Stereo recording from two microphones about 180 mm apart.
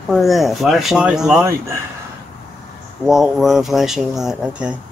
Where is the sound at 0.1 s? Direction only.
Centre (ahead or behind).